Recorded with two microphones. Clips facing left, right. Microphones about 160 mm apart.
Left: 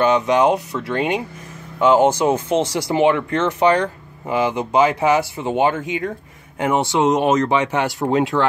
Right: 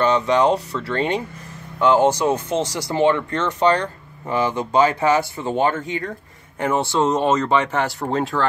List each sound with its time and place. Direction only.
0.0 s speech: 10° left (ahead or behind)